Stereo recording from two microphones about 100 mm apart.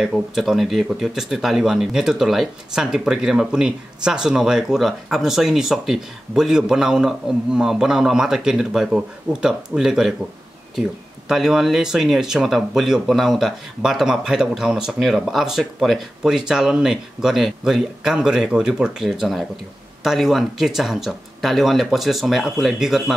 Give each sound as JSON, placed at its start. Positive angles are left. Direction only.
{"t": 0.0, "sound": "speech", "side_deg": -5}